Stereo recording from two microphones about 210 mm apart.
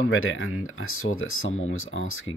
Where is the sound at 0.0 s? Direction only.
70° left (ahead or behind).